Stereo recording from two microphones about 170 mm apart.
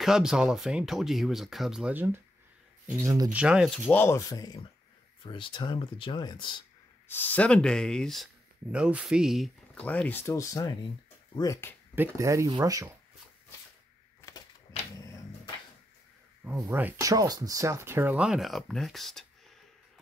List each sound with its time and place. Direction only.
0.0 s speech: 5° right (ahead or behind)
3.0 s speech: 20° right (ahead or behind)
3.3 s speech: 5° right (ahead or behind); by 6.6 s 30° left (ahead or behind)
7.1 s speech: 10° left (ahead or behind)
12.2 s speech: 20° right (ahead or behind)
16.5 s speech: 15° right (ahead or behind)